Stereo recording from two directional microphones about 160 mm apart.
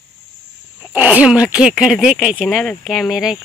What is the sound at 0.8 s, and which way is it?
Speech, 10° right (ahead or behind).